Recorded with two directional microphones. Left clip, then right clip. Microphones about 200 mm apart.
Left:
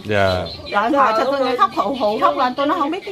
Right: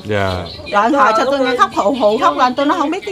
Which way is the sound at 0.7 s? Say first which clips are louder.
Right 4 dB; 45° right (ahead or behind).